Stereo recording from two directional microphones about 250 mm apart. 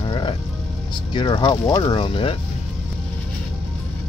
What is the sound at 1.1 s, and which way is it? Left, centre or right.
Speech, centre.